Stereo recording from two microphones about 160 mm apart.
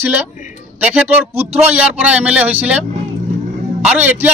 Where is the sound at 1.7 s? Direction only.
10° right (ahead or behind).